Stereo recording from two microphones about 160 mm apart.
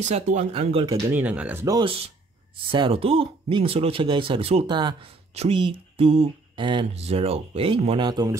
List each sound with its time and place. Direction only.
0.0 s speech: 45° right (ahead or behind)
1.1 s speech: 10° right (ahead or behind)
1.8 s speech: 35° right (ahead or behind)